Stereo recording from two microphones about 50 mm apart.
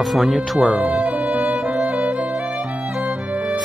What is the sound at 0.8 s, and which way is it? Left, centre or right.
Music, right.